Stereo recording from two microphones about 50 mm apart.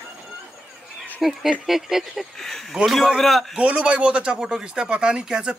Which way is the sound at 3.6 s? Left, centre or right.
Right.